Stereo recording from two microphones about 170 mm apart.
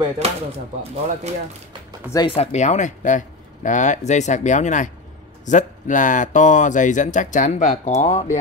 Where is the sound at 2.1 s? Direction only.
25° left (ahead or behind).